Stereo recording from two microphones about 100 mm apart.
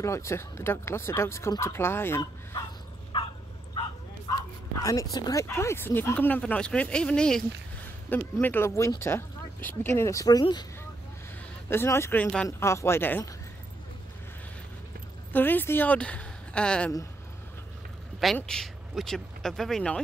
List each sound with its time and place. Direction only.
0.0 s speech: 30° left (ahead or behind)
3.1 s bow-wow: 60° left (ahead or behind)
4.8 s speech: 35° left (ahead or behind); by 7.4 s 10° left (ahead or behind)
8.1 s speech: 20° left (ahead or behind); by 10.4 s 35° left (ahead or behind)
11.7 s speech: 25° left (ahead or behind)
15.3 s speech: 20° left (ahead or behind)
18.2 s speech: 5° left (ahead or behind)